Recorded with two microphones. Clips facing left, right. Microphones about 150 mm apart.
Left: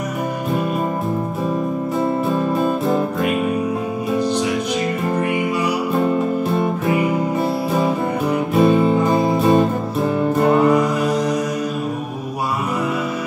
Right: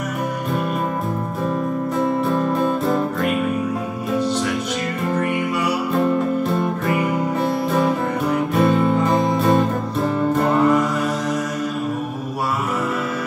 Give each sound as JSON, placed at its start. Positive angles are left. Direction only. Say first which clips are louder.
{"t": 2.2, "sound": "music", "louder": "left 1 dB", "side_deg": 5}
{"t": 6.9, "sound": "music", "louder": "left 2 dB", "side_deg": 5}